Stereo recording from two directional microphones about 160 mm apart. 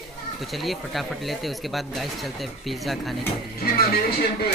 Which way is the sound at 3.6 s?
75° left (ahead or behind).